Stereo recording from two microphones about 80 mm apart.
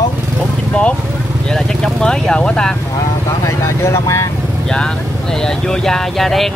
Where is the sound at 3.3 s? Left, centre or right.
Left.